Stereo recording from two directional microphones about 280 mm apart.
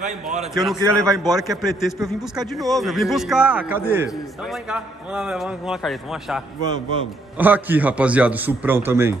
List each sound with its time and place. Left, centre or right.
0.0 s a man's voice: right
0.6 s a man's voice: centre